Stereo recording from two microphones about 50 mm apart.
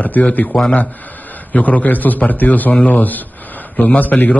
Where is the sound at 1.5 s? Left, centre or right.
Left.